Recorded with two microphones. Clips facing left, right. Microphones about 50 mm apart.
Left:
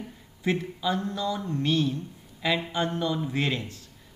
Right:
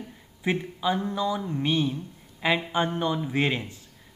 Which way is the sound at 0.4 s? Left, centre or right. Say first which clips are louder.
Even; centre.